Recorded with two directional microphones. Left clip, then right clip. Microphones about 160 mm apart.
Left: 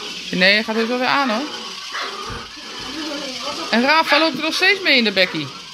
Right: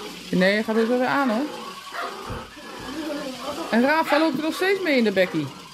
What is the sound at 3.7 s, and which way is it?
Speech, 10° right (ahead or behind).